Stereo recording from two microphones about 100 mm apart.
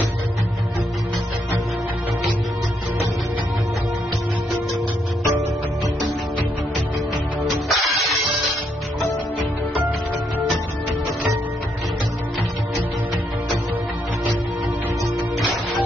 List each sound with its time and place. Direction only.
7.6 s music: centre (ahead or behind)